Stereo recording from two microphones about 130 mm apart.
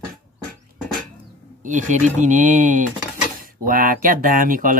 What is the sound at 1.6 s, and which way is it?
Speech, 75° right (ahead or behind).